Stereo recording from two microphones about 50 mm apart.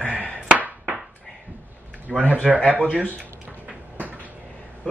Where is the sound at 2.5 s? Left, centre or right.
Right.